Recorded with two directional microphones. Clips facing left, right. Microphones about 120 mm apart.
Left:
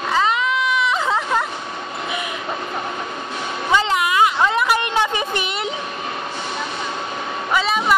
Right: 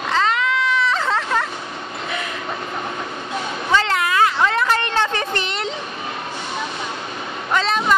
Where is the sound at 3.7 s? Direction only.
15° left (ahead or behind).